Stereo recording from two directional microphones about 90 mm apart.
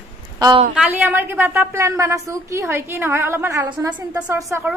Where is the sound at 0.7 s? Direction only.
15° right (ahead or behind); by 3.7 s 35° right (ahead or behind).